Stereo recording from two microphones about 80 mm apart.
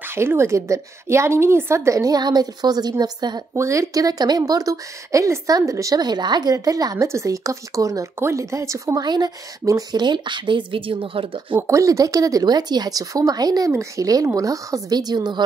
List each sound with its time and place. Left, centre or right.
0.1 s a woman's voice: right
3.5 s speech: right
6.0 s speech: right
7.1 s a woman's voice: right
9.0 s a woman's voice: right
9.7 s speech: right
10.0 s a woman's voice: right
11.6 s speech: right
13.7 s a woman's voice: right